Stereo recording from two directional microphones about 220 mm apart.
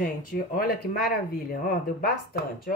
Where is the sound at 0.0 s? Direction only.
40° left (ahead or behind).